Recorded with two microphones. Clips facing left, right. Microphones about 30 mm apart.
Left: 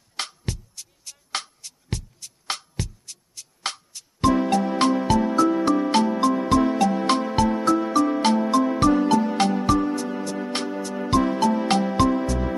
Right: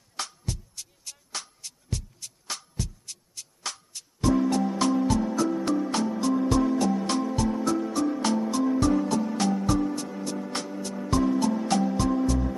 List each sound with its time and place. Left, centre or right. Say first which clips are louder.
0.1 s music: left 3 dB; left